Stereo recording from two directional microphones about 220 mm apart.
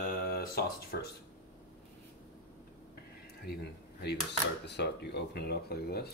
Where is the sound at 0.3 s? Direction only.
45° left (ahead or behind).